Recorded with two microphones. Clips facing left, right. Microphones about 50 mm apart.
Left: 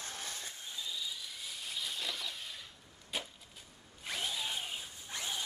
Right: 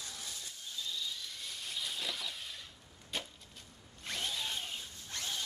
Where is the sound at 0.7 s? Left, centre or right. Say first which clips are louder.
Right 1 dB; centre.